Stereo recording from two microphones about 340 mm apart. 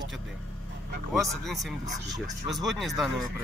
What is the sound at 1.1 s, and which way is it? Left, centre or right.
Speech, centre.